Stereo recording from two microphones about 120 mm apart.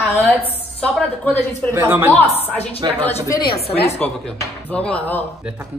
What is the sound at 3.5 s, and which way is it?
Speech, 55° left (ahead or behind).